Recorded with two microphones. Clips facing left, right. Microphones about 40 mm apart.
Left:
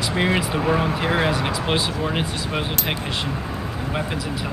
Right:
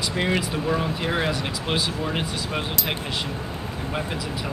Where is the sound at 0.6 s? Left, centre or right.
Left.